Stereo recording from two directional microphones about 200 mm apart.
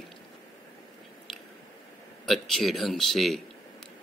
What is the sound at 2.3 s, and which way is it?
Speech, centre (ahead or behind).